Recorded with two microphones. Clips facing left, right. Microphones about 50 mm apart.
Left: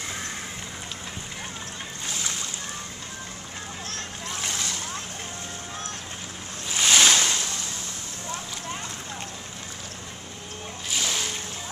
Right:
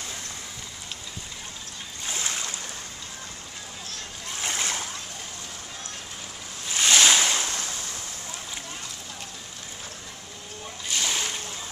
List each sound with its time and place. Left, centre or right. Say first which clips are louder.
4.6 s splash: right 2 dB; right
6.7 s ocean: even; centre
7.1 s ocean: even; centre
10.9 s splash: even; centre